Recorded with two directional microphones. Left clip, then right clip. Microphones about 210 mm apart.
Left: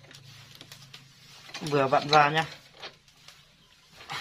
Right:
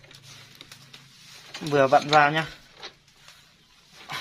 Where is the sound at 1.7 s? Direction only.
45° right (ahead or behind).